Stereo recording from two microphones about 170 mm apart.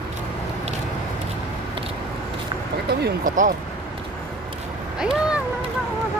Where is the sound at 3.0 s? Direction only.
50° right (ahead or behind).